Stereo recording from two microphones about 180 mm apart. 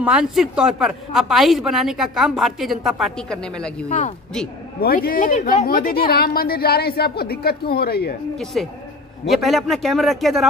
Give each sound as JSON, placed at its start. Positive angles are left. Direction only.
{"t": 0.0, "sound": "a woman's voice", "side_deg": -5}
{"t": 4.7, "sound": "speech", "side_deg": 55}
{"t": 8.5, "sound": "a woman's voice", "side_deg": 0}